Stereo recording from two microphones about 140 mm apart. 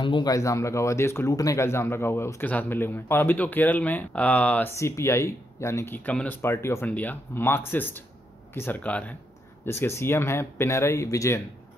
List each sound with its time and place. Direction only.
0.0 s speech: 30° left (ahead or behind)